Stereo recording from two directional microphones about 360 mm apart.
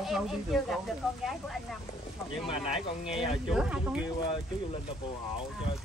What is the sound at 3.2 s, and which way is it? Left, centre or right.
Speech, centre.